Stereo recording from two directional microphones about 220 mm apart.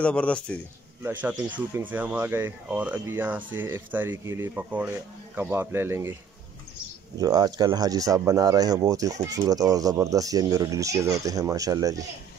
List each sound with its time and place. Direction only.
0.0 s speech: 5° left (ahead or behind)
1.0 s speech: 10° right (ahead or behind)
7.2 s speech: 15° right (ahead or behind)